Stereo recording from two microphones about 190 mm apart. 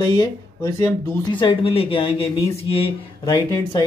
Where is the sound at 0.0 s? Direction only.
25° left (ahead or behind).